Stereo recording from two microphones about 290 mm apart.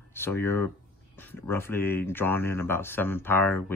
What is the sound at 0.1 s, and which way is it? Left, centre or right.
Speech, centre.